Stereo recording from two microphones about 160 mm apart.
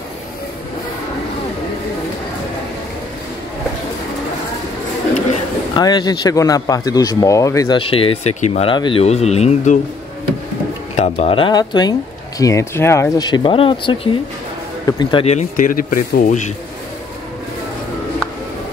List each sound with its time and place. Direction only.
5.8 s a man's voice: 25° left (ahead or behind); by 9.8 s 45° left (ahead or behind)
11.0 s a man's voice: 40° left (ahead or behind); by 13.3 s 15° left (ahead or behind)
13.3 s a man's voice: 30° left (ahead or behind)
15.2 s speech: 50° left (ahead or behind)